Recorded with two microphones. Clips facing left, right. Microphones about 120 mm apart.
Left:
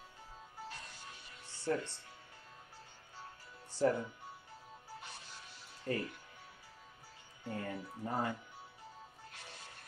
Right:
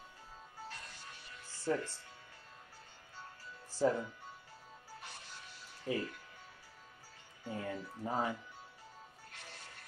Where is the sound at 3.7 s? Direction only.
5° right (ahead or behind).